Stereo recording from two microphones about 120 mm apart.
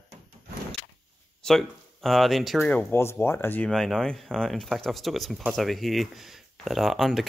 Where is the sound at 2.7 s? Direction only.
15° left (ahead or behind).